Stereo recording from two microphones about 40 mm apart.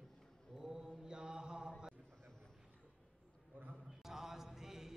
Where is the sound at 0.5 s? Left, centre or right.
Centre.